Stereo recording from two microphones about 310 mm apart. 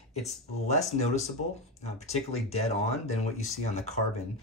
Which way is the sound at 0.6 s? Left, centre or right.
Left.